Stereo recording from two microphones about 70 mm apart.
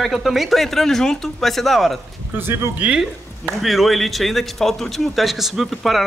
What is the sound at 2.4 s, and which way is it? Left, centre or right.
Speech, right.